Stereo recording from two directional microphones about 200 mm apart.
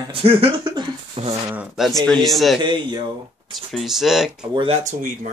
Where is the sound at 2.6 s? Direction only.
25° right (ahead or behind).